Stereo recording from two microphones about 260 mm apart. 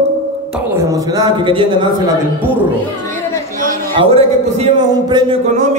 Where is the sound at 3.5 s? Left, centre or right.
Right.